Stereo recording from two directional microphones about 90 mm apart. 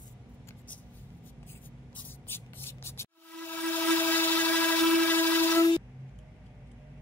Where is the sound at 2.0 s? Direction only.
25° left (ahead or behind).